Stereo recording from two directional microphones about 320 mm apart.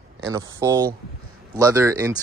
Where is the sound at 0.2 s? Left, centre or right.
Centre.